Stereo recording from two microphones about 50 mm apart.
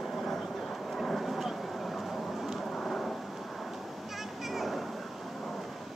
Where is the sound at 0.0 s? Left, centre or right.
Centre.